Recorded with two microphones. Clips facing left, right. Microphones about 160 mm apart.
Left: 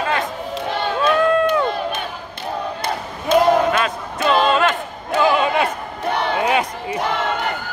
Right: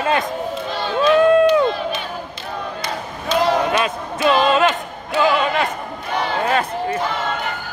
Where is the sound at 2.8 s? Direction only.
50° left (ahead or behind).